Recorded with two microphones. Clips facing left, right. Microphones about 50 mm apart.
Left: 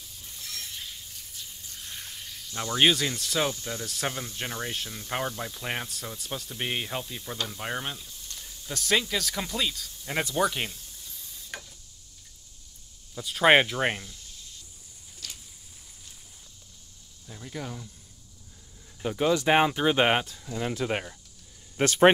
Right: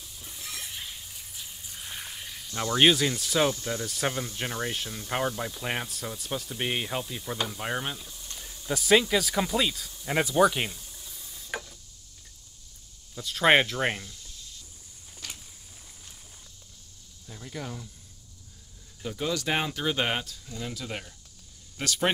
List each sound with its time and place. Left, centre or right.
0.2 s a sound: centre
2.5 s speech: centre
8.0 s a sound: centre
8.4 s speech: centre
13.1 s speech: centre
17.3 s speech: centre
19.0 s speech: left